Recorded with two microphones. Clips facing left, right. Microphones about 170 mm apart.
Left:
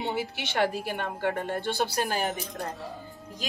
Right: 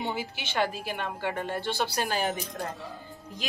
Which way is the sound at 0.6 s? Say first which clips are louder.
Left 2 dB; 55° left (ahead or behind).